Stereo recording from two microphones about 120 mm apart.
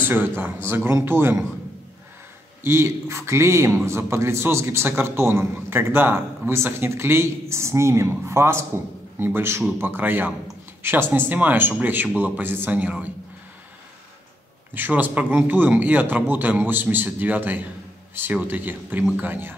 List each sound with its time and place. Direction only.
0.0 s a man's voice: 15° right (ahead or behind)
2.6 s a man's voice: 20° right (ahead or behind)
14.7 s a man's voice: 15° right (ahead or behind)